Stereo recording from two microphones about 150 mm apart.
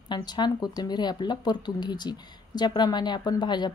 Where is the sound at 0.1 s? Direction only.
30° left (ahead or behind).